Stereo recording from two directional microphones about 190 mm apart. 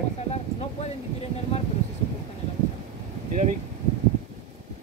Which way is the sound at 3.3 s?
40° right (ahead or behind).